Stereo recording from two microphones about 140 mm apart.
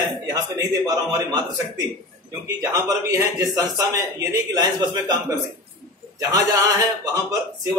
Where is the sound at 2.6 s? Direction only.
25° right (ahead or behind).